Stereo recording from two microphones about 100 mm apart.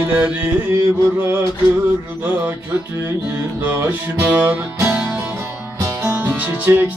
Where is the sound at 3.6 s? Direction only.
20° right (ahead or behind).